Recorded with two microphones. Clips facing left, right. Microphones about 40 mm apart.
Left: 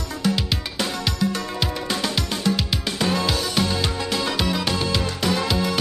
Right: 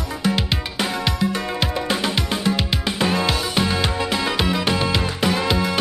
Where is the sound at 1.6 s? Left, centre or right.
Centre.